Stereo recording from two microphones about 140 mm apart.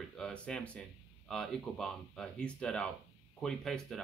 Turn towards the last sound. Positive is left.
turn(degrees=5)  # may be behind; listen again after turning